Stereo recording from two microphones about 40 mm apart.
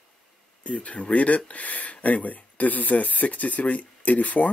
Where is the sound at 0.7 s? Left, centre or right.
Left.